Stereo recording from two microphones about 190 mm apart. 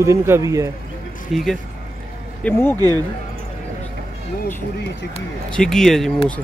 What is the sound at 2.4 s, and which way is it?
Speech, 10° left (ahead or behind).